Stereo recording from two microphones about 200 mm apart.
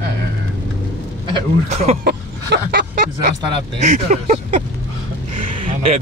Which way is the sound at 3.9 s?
35° right (ahead or behind).